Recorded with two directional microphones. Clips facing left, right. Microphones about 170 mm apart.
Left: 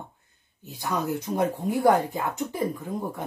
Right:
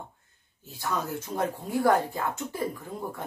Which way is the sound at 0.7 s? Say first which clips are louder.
Left 3 dB; 15° left (ahead or behind).